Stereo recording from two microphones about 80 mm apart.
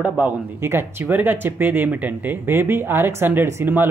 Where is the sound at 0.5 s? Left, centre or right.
Right.